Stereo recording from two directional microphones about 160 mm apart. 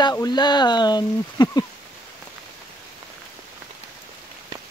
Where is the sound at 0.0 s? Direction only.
25° left (ahead or behind).